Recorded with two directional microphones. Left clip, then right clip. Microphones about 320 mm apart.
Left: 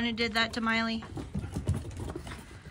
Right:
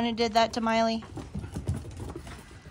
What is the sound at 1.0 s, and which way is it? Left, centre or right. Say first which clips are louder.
Clip-clop: even; centre.